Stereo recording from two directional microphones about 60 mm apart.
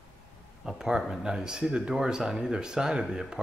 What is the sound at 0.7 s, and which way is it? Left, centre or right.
Speech, centre.